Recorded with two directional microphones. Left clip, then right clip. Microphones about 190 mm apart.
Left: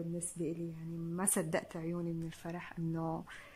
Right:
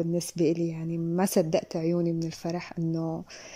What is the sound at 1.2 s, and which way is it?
Speech, 30° right (ahead or behind).